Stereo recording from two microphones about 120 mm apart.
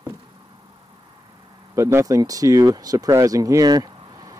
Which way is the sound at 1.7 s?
25° right (ahead or behind).